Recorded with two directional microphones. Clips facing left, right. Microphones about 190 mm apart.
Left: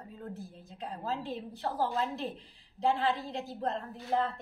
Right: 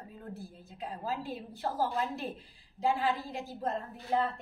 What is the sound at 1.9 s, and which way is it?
Speech, 15° right (ahead or behind).